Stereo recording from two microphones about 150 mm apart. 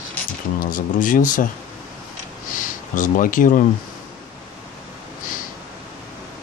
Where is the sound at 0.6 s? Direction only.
65° left (ahead or behind).